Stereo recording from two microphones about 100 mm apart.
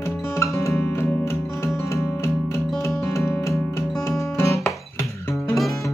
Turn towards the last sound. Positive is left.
turn(degrees=30)  # may be behind; listen again after turning